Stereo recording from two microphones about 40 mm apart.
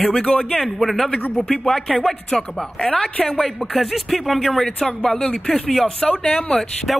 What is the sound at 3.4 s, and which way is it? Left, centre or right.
Speech, centre.